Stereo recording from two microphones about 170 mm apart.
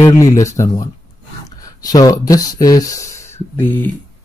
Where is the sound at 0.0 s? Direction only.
20° left (ahead or behind).